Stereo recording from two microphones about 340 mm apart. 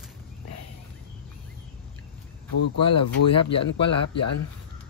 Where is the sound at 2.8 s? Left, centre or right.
Centre.